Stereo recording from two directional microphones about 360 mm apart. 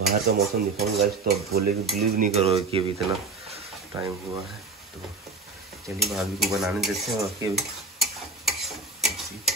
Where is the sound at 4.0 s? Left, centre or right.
Centre.